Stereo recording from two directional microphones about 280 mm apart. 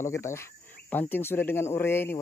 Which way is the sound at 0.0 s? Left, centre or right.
Centre.